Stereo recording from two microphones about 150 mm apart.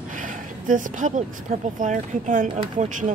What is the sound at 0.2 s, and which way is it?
Speech, 60° right (ahead or behind).